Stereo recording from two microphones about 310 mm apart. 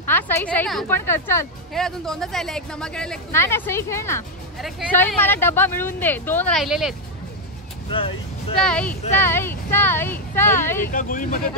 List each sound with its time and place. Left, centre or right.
0.0 s speech: centre
7.9 s speech: centre
8.6 s speech: centre
10.9 s speech: left